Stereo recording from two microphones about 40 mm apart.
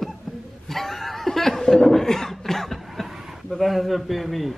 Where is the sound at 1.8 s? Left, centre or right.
Centre.